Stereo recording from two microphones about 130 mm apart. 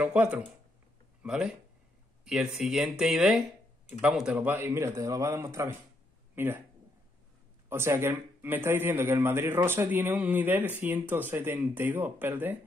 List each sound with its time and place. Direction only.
0.0 s a man's voice: 5° right (ahead or behind)
7.7 s speech: 20° right (ahead or behind)